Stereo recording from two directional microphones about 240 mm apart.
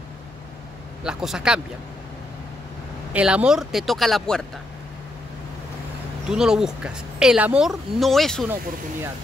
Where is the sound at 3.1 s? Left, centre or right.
Centre.